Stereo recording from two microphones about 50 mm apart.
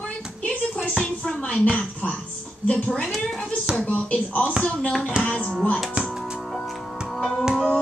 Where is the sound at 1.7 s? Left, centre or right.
Left.